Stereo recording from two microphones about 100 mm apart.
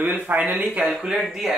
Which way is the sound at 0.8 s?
Centre (ahead or behind).